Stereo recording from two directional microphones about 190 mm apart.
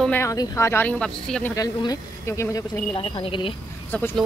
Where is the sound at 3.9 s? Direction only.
5° left (ahead or behind).